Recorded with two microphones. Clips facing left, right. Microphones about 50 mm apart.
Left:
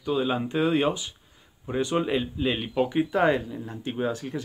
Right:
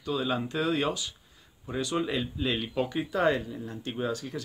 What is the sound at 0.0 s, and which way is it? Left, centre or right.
Speech, left.